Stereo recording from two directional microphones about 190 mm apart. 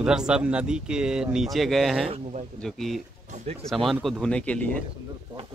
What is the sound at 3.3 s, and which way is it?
Speech, 35° right (ahead or behind).